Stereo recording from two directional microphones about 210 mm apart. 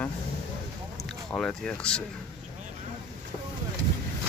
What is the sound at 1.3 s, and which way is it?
Speech, 5° left (ahead or behind).